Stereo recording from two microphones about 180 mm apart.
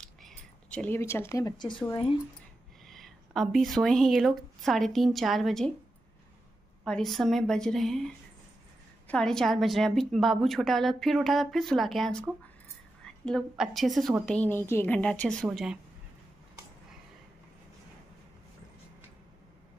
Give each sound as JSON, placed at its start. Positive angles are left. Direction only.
{"t": 0.0, "sound": "a sound", "side_deg": 5}
{"t": 1.9, "sound": "speech", "side_deg": 30}
{"t": 2.9, "sound": "a woman's voice", "side_deg": 0}
{"t": 6.8, "sound": "a woman's voice", "side_deg": 5}